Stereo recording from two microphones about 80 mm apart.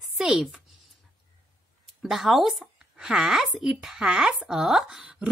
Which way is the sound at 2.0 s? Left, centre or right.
Centre.